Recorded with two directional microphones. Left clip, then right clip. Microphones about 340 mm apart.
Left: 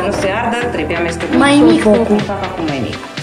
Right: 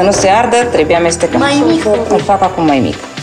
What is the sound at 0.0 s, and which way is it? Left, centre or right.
Speech, centre.